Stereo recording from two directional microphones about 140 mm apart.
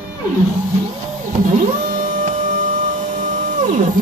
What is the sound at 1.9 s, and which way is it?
Printer, 75° right (ahead or behind).